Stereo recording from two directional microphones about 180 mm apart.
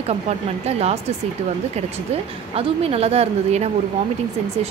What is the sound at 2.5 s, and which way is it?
Speech, 35° right (ahead or behind).